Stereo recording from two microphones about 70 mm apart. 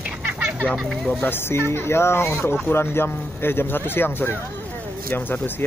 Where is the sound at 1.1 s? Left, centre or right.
Left.